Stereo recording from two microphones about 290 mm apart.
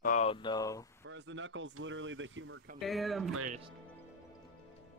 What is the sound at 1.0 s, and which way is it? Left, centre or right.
Speech, right.